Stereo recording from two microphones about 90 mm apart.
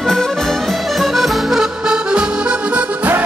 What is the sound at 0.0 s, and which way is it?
Accordion, 5° left (ahead or behind).